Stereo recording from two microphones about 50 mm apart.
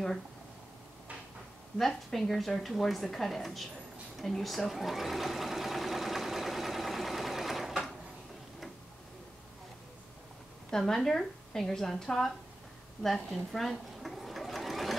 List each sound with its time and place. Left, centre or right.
1.8 s a woman's voice: centre
4.2 s sewing machine: centre
10.7 s a woman's voice: centre
13.0 s sewing machine: centre